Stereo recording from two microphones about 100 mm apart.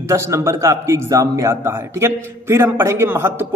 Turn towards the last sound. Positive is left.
turn(degrees=-25)  # may be behind; listen again after turning